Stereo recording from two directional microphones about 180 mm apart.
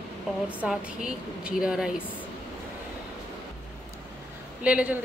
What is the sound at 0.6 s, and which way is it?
Speech, 5° right (ahead or behind).